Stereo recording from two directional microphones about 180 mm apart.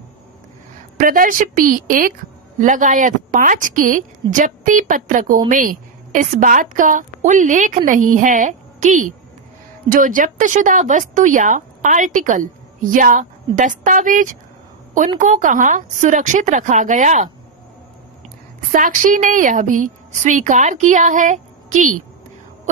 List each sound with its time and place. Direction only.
0.9 s a woman's voice: 50° right (ahead or behind)
18.7 s a woman's voice: 45° right (ahead or behind)